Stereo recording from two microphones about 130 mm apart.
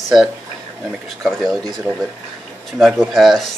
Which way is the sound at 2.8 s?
Centre (ahead or behind).